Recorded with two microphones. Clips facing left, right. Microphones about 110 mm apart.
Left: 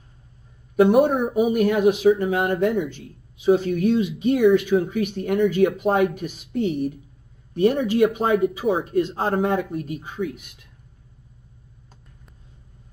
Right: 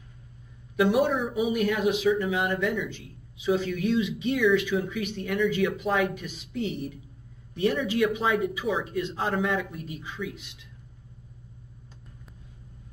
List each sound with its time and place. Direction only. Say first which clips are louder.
0.7 s speech: left 7 dB; 45° left (ahead or behind)